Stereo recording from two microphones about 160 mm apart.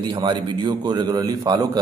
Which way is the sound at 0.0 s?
30° right (ahead or behind).